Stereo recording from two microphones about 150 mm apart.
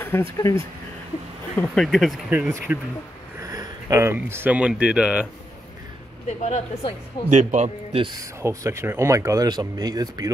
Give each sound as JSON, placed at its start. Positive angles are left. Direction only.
{"t": 0.0, "sound": "speech", "side_deg": 15}
{"t": 1.6, "sound": "speech", "side_deg": 0}
{"t": 6.4, "sound": "a woman's voice", "side_deg": 50}
{"t": 7.2, "sound": "speech", "side_deg": -50}
{"t": 8.2, "sound": "speech", "side_deg": -20}